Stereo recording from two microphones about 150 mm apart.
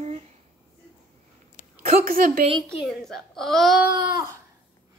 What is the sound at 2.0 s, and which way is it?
Speech, 70° right (ahead or behind).